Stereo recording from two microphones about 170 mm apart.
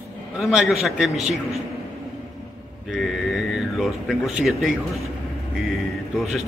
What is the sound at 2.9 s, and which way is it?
Speech, centre (ahead or behind).